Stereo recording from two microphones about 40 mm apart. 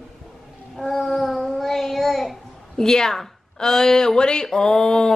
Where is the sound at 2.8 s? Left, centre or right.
Centre.